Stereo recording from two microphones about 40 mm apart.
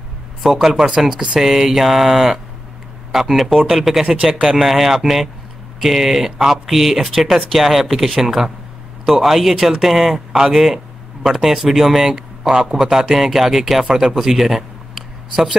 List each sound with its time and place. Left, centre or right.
0.4 s speech: centre
0.7 s mantra: centre
3.1 s speech: centre
11.2 s mantra: centre
12.8 s speech: centre
13.1 s speech: centre